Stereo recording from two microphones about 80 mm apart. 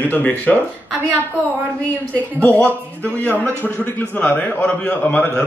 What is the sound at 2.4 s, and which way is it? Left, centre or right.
A man's voice, centre.